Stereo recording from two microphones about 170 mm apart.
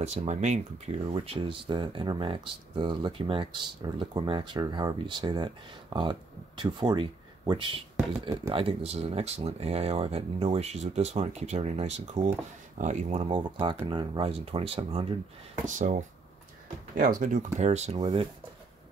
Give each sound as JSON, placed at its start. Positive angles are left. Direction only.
{"t": 0.0, "sound": "speech", "side_deg": -40}
{"t": 1.1, "sound": "speech", "side_deg": -30}
{"t": 13.2, "sound": "speech", "side_deg": -30}
{"t": 15.6, "sound": "speech", "side_deg": -50}
{"t": 17.9, "sound": "speech", "side_deg": -30}